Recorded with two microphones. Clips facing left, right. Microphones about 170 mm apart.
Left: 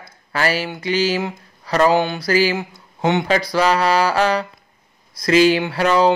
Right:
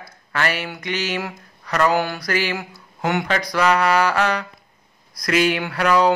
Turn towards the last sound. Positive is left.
turn(degrees=25)  # may be behind; listen again after turning